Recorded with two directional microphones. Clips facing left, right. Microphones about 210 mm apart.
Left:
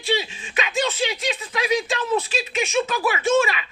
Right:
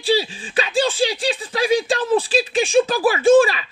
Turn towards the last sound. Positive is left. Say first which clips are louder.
# right 7 dB
turn(degrees=-30)  # may be behind; listen again after turning